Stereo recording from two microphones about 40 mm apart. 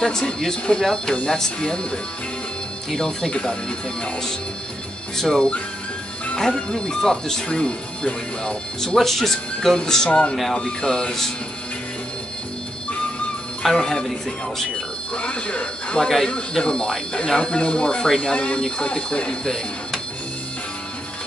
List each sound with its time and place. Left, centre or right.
0.0 s speech: centre
1.1 s speech: left
3.0 s speech: centre
5.1 s speech: centre
8.8 s speech: centre
10.0 s speech: left
10.5 s speech: centre
13.7 s speech: centre
15.1 s speech: left
18.3 s speech: left